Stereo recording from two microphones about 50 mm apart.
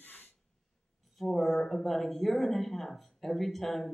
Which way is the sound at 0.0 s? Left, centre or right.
Left.